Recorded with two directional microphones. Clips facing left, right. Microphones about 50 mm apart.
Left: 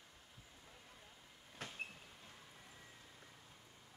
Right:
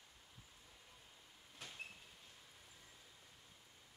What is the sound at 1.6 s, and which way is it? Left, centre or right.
Train, left.